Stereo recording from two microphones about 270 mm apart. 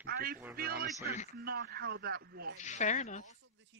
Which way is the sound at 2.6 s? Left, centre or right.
Left.